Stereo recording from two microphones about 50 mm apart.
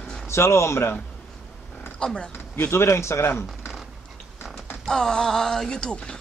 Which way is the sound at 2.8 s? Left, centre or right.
Left.